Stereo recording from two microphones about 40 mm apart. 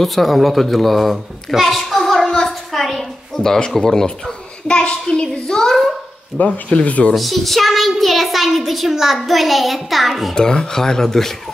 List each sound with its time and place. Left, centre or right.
0.0 s a child's voice: centre
2.4 s a sound: centre
3.8 s a child's voice: centre
6.3 s speech: left
7.2 s a child's voice: centre
10.3 s speech: centre